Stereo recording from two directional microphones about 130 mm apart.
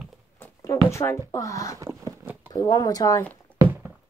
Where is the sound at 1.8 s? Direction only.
25° right (ahead or behind).